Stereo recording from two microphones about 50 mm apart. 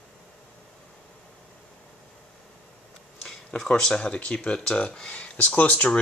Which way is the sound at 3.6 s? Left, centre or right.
Centre.